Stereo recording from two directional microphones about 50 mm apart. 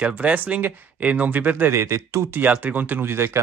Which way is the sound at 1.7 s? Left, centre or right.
Right.